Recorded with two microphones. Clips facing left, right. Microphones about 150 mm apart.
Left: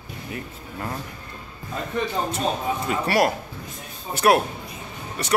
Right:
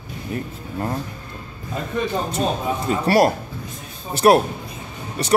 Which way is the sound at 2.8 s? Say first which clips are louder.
Right 5 dB; 35° right (ahead or behind).